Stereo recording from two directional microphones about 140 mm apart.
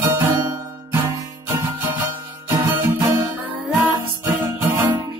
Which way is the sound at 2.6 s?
15° right (ahead or behind).